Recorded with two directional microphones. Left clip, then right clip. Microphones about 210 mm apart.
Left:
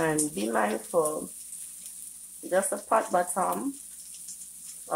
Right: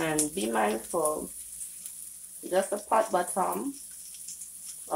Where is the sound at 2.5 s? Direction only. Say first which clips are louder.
Left 1 dB; 10° left (ahead or behind).